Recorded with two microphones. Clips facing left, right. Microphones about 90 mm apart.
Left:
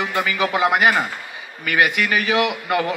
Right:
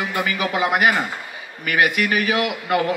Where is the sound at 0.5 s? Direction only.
90° left.